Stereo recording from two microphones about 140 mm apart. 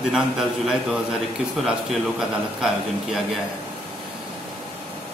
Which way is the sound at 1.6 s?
Centre (ahead or behind).